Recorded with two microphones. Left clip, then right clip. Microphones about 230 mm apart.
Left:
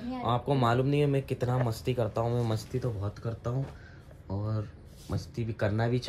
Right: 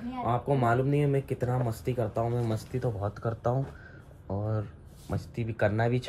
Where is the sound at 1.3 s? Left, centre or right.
Centre.